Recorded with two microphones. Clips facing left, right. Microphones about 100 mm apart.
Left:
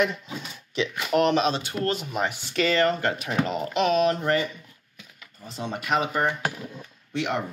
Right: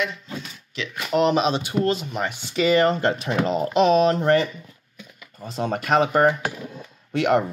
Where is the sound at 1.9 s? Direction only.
5° left (ahead or behind).